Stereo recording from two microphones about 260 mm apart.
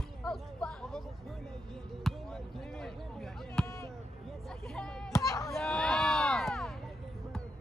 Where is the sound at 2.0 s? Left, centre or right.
Centre.